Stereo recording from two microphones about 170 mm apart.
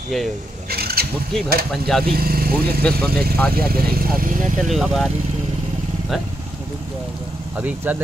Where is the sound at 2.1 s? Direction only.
60° right (ahead or behind).